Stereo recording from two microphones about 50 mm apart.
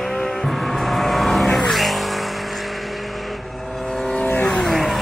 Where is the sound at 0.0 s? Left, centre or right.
Centre.